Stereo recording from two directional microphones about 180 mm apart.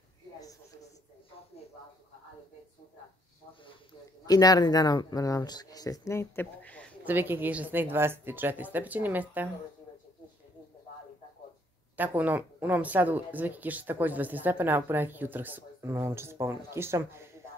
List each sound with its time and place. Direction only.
4.3 s speech: 20° left (ahead or behind)
7.1 s speech: 10° right (ahead or behind)
12.0 s speech: 10° right (ahead or behind)